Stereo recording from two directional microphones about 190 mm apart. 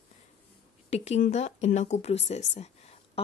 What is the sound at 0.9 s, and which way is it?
Speech, 35° left (ahead or behind).